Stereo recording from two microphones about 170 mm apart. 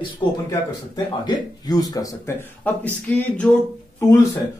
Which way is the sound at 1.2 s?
20° left (ahead or behind).